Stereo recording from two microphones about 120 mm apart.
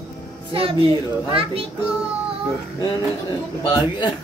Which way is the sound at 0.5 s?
50° right (ahead or behind).